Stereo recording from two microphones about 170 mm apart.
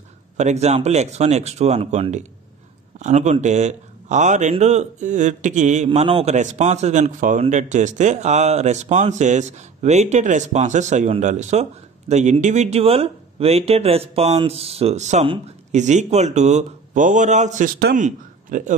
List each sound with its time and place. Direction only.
0.4 s a man's voice: 40° right (ahead or behind)
5.9 s a man's voice: 35° right (ahead or behind); by 18.6 s 50° right (ahead or behind)